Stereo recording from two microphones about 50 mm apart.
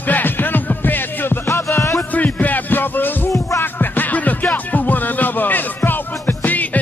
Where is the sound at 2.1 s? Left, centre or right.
Left.